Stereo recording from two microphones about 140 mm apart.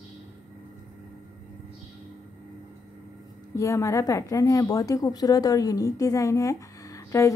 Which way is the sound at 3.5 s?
20° left (ahead or behind).